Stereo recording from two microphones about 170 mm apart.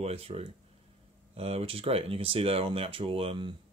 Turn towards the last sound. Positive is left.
turn(degrees=-30)  # may be behind; listen again after turning